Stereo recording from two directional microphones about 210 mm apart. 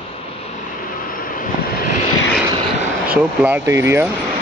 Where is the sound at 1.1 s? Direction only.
40° left (ahead or behind).